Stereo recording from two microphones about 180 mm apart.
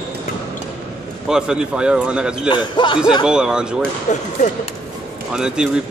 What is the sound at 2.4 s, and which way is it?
Speech, 25° left (ahead or behind).